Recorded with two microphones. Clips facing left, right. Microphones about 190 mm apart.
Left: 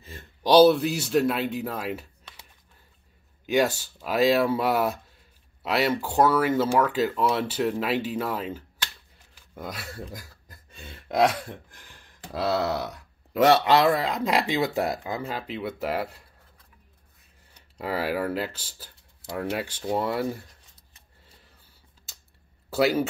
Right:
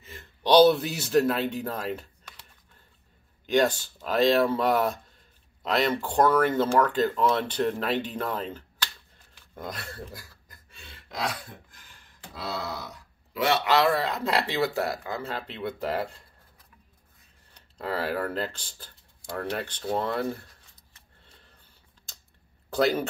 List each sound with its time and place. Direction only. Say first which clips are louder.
0.4 s speech: left 2 dB; 5° left (ahead or behind)
3.4 s speech: even; 10° left (ahead or behind)
10.7 s a sound: left 9 dB; 45° left (ahead or behind)
12.3 s a sound: left 9 dB; 75° left (ahead or behind)
13.3 s speech: left 7 dB; 45° left (ahead or behind)
13.7 s speech: left 2 dB; 20° left (ahead or behind); by 16.2 s 5° left (ahead or behind)
17.6 s speech: left 1 dB; 10° left (ahead or behind)
22.7 s speech: left 2 dB; 5° left (ahead or behind)